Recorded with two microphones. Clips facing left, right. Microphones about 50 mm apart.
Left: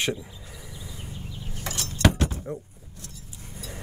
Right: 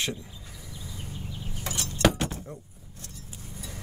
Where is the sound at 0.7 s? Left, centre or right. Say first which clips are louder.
Right 1 dB; centre.